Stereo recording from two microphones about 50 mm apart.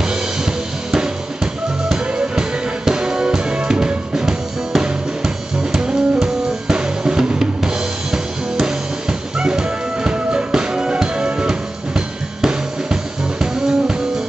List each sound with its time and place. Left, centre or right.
0.0 s music: centre